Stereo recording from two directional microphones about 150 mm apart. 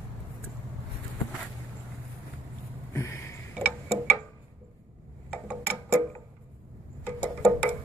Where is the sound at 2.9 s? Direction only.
20° left (ahead or behind).